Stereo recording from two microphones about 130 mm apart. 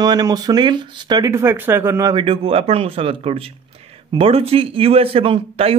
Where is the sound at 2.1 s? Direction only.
45° right (ahead or behind).